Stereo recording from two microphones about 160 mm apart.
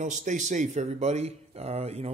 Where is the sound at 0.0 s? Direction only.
50° right (ahead or behind).